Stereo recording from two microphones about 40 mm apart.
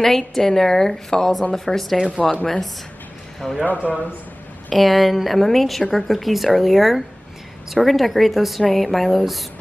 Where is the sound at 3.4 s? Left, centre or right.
Centre.